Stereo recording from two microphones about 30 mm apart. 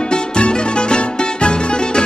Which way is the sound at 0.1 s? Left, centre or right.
Left.